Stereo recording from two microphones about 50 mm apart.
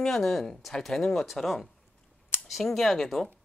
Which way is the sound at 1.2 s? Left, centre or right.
Centre.